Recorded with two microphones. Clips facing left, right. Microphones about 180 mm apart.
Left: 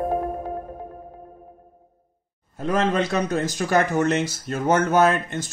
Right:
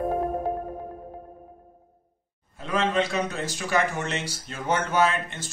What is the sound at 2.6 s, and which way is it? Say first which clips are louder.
A man's voice: left 3 dB; 40° left (ahead or behind).